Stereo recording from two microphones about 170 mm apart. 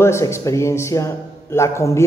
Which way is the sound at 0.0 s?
15° left (ahead or behind).